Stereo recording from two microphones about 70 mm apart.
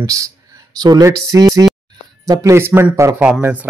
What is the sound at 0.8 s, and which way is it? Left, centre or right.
Speech, right.